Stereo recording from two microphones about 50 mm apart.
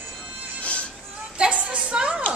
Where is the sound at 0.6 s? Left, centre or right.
Left.